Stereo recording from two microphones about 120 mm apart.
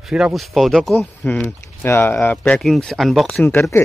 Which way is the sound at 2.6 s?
5° left (ahead or behind).